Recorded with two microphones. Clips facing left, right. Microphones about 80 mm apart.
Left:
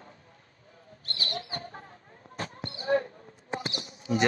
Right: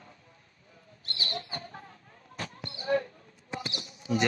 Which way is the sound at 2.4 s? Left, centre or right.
Left.